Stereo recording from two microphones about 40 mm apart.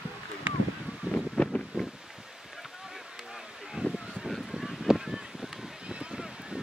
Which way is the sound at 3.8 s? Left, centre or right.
Right.